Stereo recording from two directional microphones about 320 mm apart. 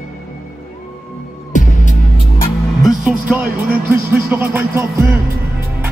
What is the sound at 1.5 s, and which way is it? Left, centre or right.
Music, left.